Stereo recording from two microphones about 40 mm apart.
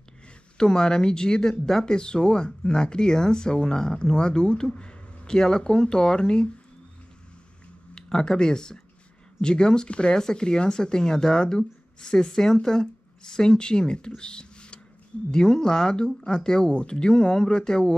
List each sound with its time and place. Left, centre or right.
0.6 s speech: centre
7.9 s speech: centre